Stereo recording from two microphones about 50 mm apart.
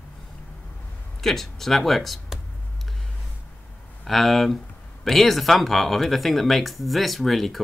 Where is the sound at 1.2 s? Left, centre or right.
Centre.